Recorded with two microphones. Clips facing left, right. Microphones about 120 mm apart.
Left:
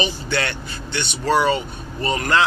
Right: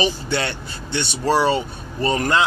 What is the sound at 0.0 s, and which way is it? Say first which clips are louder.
Speech: right 2 dB; 30° right (ahead or behind).